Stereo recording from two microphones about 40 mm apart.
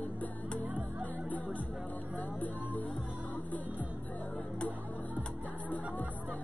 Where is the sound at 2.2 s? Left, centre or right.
Left.